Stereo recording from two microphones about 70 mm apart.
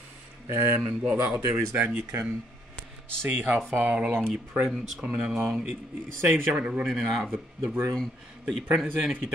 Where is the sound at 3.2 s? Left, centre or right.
Right.